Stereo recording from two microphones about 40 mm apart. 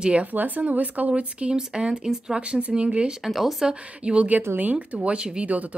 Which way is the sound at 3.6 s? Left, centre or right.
Right.